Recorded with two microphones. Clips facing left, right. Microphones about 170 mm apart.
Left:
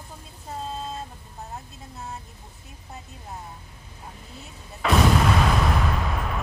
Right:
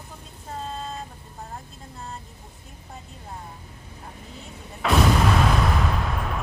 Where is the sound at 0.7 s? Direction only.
5° left (ahead or behind).